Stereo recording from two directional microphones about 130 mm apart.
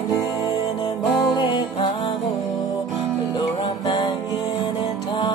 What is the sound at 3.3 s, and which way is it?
Music, 35° left (ahead or behind).